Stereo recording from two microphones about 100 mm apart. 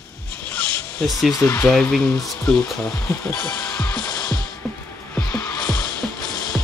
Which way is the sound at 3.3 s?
20° left (ahead or behind).